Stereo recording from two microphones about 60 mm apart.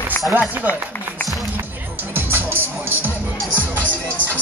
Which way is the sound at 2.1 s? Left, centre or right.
Right.